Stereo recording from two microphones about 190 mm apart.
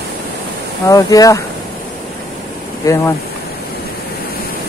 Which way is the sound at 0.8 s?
20° left (ahead or behind).